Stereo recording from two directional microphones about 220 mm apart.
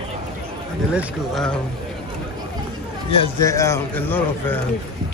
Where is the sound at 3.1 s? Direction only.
25° left (ahead or behind).